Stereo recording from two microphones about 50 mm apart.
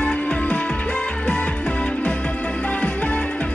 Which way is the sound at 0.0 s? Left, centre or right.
Left.